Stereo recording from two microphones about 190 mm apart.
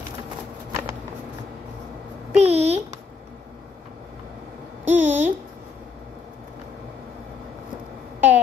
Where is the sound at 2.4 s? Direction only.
35° right (ahead or behind).